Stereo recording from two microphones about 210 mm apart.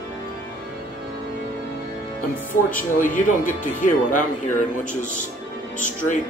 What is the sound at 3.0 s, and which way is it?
Speech, 40° left (ahead or behind).